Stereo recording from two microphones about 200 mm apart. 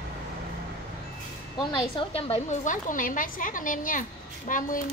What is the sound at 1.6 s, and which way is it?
A woman's voice, 25° left (ahead or behind).